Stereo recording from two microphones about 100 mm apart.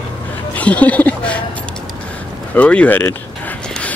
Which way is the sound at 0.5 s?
15° left (ahead or behind).